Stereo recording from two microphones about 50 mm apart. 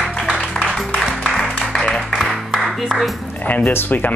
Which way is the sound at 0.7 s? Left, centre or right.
Centre.